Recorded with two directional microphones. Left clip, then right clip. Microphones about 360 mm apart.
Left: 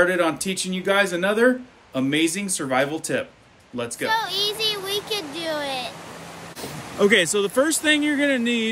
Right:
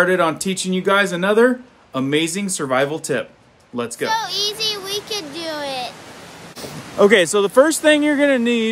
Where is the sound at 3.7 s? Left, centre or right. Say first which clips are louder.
Right 2 dB; centre.